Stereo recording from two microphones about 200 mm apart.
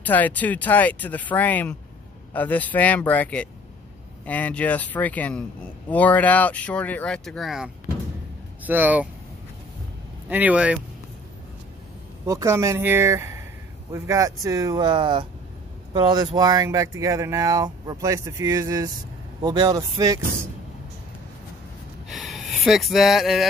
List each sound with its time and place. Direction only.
0.0 s speech: 10° left (ahead or behind); by 9.1 s 10° right (ahead or behind)
10.3 s speech: 5° right (ahead or behind)
12.3 s speech: 15° right (ahead or behind)
22.1 s a sound: centre (ahead or behind)